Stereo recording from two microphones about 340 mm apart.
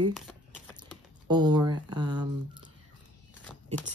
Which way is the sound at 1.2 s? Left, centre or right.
Centre.